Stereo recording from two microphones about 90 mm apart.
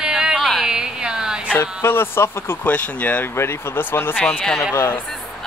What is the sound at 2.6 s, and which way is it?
Speech, 15° left (ahead or behind).